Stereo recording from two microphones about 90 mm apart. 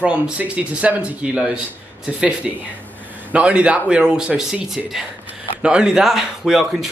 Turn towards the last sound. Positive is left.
turn(degrees=-5)  # may be behind; listen again after turning